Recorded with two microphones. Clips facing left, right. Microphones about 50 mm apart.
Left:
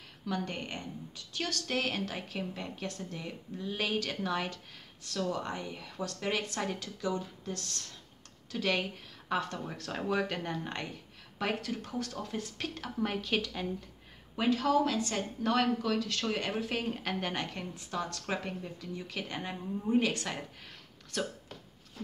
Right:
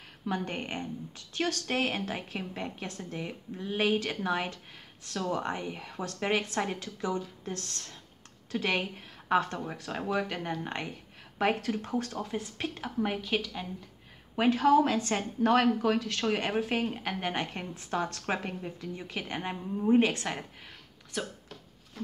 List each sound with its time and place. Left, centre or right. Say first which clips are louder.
0.2 s a woman's voice: right 2 dB; right
9.7 s speech: right 1 dB; centre
11.3 s speech: right 5 dB; right
12.2 s speech: right 3 dB; right; by 13.7 s centre
14.3 s a woman's voice: right 5 dB; right
16.9 s a woman's voice: right 2 dB; centre; by 20.3 s right
21.1 s speech: left 1 dB; centre